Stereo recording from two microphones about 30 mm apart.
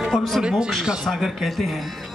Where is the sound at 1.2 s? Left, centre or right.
Centre.